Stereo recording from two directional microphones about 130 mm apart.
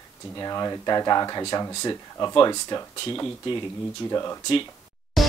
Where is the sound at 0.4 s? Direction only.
30° left (ahead or behind).